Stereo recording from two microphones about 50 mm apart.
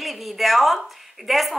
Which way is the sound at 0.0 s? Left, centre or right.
Centre.